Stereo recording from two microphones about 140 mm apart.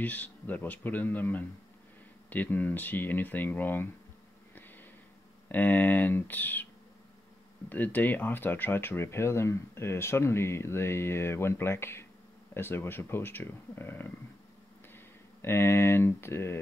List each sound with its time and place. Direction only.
0.0 s speech: 10° left (ahead or behind)
5.5 s speech: 15° left (ahead or behind)
7.7 s speech: 15° left (ahead or behind)
15.4 s speech: 15° left (ahead or behind)